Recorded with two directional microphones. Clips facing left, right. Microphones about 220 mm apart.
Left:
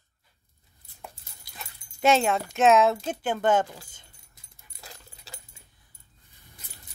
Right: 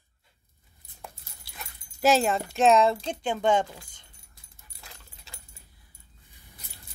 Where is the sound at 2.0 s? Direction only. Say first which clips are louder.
Even; centre (ahead or behind).